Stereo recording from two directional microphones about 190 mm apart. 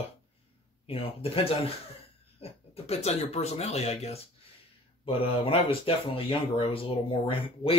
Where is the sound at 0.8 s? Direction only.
30° left (ahead or behind).